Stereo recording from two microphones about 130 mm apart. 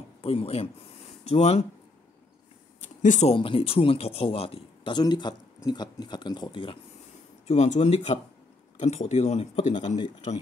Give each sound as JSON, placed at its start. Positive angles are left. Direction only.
{"t": 0.2, "sound": "speech", "side_deg": 45}
{"t": 3.0, "sound": "speech", "side_deg": 75}
{"t": 3.3, "sound": "speech", "side_deg": 45}
{"t": 7.4, "sound": "speech", "side_deg": 65}